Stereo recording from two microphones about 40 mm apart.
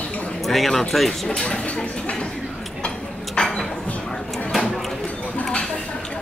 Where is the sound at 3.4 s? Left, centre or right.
Left.